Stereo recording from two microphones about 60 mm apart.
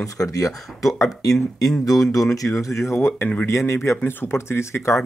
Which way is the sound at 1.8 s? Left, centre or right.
Left.